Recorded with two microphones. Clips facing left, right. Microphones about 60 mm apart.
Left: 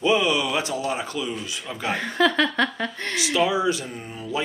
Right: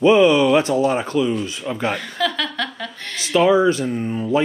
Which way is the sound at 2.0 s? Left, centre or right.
Left.